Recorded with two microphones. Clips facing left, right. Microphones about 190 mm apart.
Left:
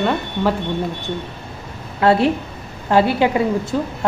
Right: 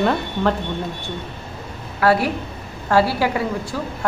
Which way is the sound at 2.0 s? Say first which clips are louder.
Left 3 dB; 25° left (ahead or behind).